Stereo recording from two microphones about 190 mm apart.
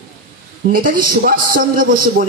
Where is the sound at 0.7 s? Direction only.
50° right (ahead or behind).